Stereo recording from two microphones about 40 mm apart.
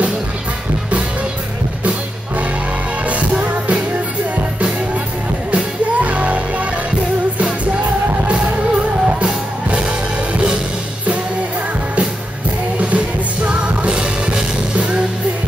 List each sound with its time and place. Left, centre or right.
3.1 s music: right
5.5 s music: right
9.0 s music: right
12.7 s music: right